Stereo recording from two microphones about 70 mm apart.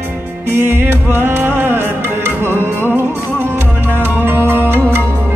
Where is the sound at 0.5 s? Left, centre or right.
Right.